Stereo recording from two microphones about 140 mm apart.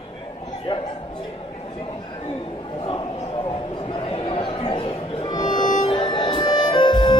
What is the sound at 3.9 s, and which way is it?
Music, 35° left (ahead or behind).